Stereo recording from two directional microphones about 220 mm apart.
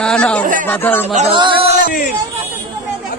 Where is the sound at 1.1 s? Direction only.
25° right (ahead or behind).